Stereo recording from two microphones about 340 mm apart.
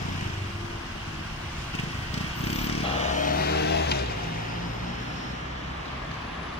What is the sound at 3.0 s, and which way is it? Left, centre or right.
Vehicle, left.